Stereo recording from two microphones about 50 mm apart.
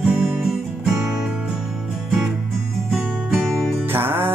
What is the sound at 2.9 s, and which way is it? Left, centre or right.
Music, centre.